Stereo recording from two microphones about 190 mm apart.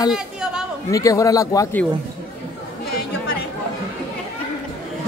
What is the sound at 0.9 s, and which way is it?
Speech, 20° left (ahead or behind).